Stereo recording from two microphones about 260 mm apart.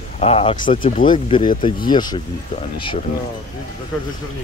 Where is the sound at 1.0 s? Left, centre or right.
Centre.